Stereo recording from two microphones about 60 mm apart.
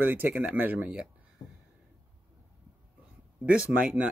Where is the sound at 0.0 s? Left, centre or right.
Right.